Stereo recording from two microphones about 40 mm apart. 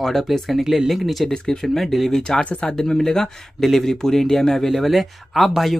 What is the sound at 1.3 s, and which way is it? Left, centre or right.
Speech, left.